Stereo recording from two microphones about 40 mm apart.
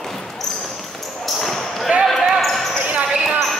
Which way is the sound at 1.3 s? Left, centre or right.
Centre.